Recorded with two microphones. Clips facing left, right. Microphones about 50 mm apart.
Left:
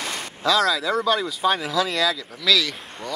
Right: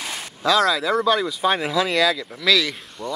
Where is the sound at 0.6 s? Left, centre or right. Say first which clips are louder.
Right 3 dB; centre.